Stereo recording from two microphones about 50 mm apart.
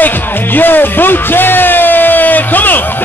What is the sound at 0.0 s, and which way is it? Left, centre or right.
Music, left.